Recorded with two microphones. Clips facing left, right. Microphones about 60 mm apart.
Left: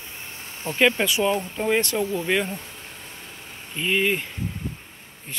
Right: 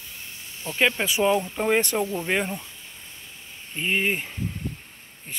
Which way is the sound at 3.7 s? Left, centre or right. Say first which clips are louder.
Left 2 dB; right.